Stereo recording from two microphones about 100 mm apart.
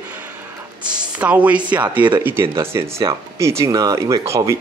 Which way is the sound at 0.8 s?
15° right (ahead or behind).